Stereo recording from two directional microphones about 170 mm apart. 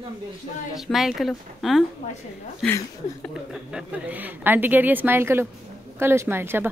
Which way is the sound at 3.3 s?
5° right (ahead or behind).